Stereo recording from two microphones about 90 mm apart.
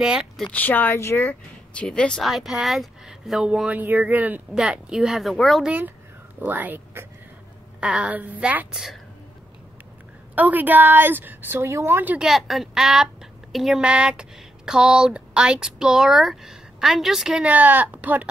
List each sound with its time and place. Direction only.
0.0 s speech: 5° right (ahead or behind)
0.5 s speech: 20° left (ahead or behind)
1.7 s speech: 10° left (ahead or behind)
2.2 s speech: centre (ahead or behind)
5.6 s a woman's voice: 15° right (ahead or behind)
7.8 s speech: 10° right (ahead or behind)
10.3 s a woman's voice: 20° right (ahead or behind)
12.2 s speech: centre (ahead or behind)